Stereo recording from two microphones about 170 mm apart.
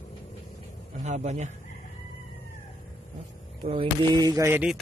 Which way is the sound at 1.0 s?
40° right (ahead or behind).